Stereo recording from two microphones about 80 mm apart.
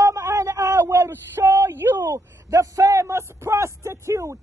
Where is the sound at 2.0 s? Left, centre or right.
Right.